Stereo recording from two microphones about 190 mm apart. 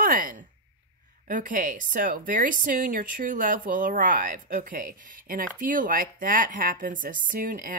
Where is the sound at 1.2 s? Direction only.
45° right (ahead or behind).